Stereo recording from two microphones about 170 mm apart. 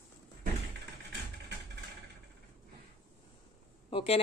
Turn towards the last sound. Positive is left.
turn(degrees=35)  # may be behind; listen again after turning